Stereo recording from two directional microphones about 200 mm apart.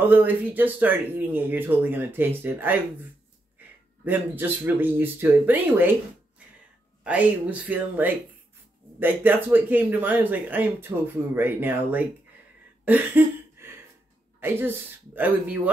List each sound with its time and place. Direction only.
0.1 s speech: 10° right (ahead or behind)
7.0 s speech: 5° right (ahead or behind)
12.8 s a sound: 10° right (ahead or behind)
15.1 s speech: 10° right (ahead or behind)